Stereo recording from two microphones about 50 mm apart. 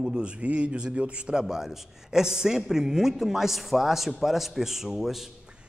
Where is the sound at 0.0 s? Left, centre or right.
Centre.